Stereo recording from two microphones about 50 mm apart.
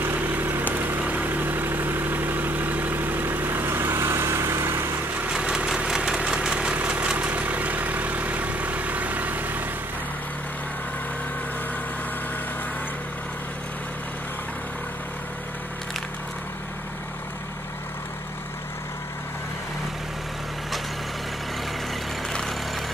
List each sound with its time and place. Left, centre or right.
0.0 s vehicle: right
5.3 s vehicle: centre
5.9 s engine: centre
6.8 s vehicle: right